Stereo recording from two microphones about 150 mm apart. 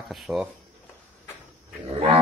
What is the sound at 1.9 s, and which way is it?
Livestock, 45° right (ahead or behind).